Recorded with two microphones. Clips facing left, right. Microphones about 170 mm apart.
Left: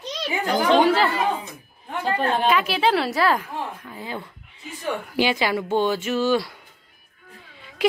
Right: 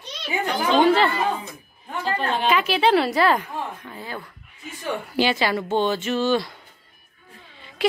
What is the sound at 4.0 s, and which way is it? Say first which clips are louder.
Speech: left 2 dB; 20° left (ahead or behind).